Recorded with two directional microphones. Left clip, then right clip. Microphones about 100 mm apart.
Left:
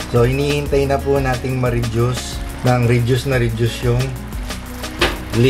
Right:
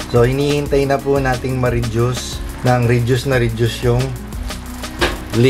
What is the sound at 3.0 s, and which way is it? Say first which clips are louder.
Speech: right 2 dB; 20° right (ahead or behind).